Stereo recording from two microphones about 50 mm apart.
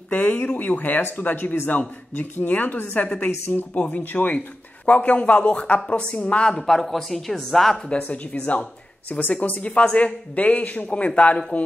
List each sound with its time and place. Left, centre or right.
0.1 s speech: left
2.1 s a woman's voice: left
3.7 s speech: left
6.6 s speech: centre
8.0 s speech: left